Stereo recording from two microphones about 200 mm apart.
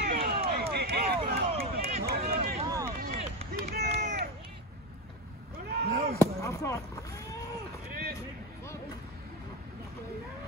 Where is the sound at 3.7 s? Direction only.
55° right (ahead or behind).